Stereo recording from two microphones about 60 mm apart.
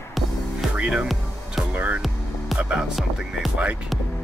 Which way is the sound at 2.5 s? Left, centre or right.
Centre.